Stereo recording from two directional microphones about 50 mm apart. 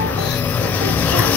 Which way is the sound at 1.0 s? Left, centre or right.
Left.